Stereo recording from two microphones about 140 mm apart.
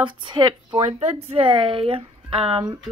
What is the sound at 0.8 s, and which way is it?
A woman's voice, 45° right (ahead or behind).